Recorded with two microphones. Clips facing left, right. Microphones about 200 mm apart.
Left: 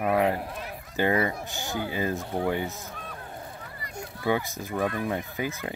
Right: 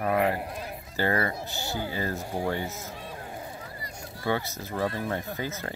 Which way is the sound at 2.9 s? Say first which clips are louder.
Right 1 dB; 25° right (ahead or behind).